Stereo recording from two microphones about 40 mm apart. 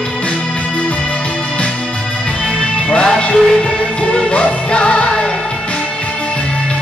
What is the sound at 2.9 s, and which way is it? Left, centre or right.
Music, left.